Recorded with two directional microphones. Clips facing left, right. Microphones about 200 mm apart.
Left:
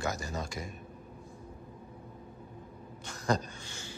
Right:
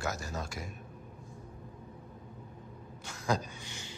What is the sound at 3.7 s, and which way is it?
Music, 20° right (ahead or behind).